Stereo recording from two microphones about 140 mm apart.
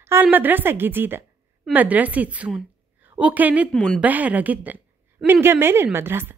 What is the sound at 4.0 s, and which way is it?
A woman's voice, 10° right (ahead or behind).